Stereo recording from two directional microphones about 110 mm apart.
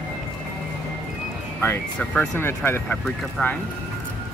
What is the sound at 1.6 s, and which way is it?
Speech, 15° left (ahead or behind).